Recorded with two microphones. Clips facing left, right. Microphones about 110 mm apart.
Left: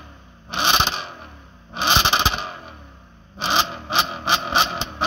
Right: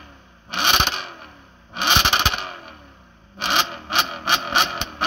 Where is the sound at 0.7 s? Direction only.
5° right (ahead or behind).